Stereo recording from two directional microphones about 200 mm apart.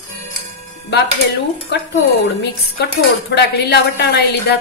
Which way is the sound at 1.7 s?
60° left (ahead or behind).